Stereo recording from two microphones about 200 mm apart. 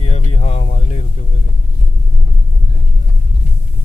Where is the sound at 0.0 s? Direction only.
35° left (ahead or behind).